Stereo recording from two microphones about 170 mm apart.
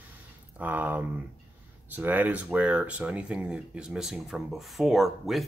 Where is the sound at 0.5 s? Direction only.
10° right (ahead or behind).